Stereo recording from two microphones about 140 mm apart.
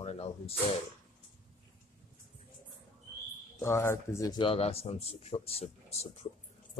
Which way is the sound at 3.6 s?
20° left (ahead or behind).